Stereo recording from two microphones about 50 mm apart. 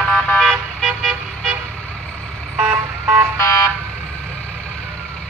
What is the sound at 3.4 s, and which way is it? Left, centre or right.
Car alarm, left.